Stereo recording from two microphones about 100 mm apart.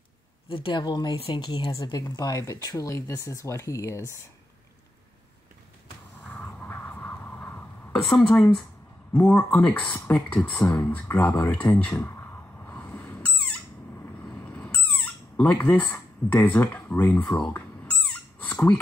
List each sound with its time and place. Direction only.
0.5 s speech: 60° left (ahead or behind)
1.7 s speech: 35° left (ahead or behind)
6.3 s a sound: 15° left (ahead or behind)
7.9 s a woman's voice: 5° left (ahead or behind)
11.8 s a sound: 20° left (ahead or behind)
15.3 s speech: 15° left (ahead or behind)
17.5 s cat: 15° left (ahead or behind)